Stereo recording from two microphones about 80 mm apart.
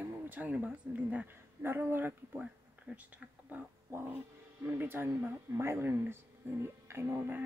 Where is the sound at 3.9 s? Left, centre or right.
Right.